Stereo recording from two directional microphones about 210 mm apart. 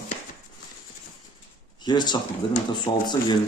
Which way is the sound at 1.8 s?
20° left (ahead or behind).